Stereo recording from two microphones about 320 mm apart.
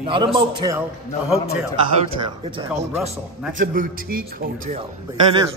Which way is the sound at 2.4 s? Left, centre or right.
Centre.